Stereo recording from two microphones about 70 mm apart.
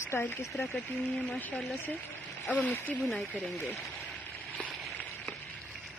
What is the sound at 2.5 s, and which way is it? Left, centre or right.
Speech, left.